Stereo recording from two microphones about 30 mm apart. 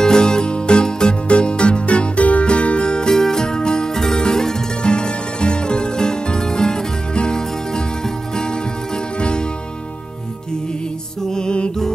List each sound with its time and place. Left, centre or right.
0.0 s music: left
1.3 s music: left
3.1 s music: centre
4.8 s music: left
11.2 s music: left